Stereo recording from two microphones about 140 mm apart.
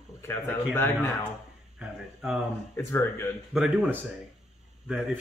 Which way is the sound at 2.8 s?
15° left (ahead or behind).